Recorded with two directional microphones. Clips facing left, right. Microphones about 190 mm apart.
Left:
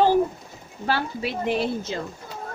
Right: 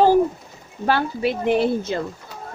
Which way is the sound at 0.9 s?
55° right (ahead or behind).